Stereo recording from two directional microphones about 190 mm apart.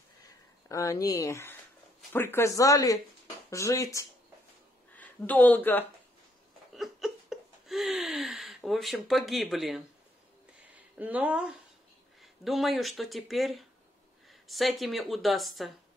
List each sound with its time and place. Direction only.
0.7 s speech: 15° left (ahead or behind)
6.7 s laughter: centre (ahead or behind)
10.7 s speech: 10° right (ahead or behind)